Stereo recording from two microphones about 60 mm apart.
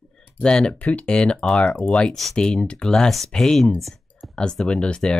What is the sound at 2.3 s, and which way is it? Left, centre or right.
Speech, centre.